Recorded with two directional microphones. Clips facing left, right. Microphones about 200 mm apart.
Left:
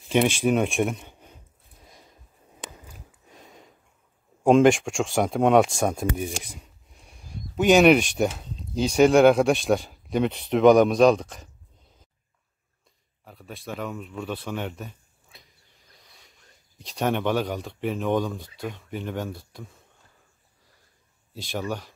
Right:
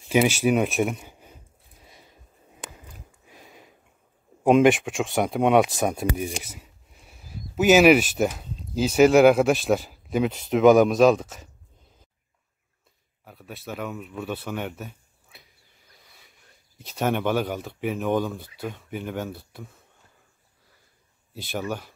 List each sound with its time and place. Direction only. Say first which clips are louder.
0.1 s speech: right 1 dB; 5° right (ahead or behind)
1.9 s a sound: even; 5° right (ahead or behind)
3.3 s a sound: left 1 dB; 5° right (ahead or behind)
4.4 s speech: even; 5° right (ahead or behind)
13.2 s speech: even; centre (ahead or behind)
21.3 s speech: even; centre (ahead or behind)